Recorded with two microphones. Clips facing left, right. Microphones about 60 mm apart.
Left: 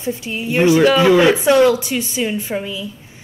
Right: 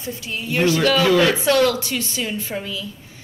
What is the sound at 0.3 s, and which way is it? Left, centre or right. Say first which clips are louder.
A woman's voice: left 5 dB; centre.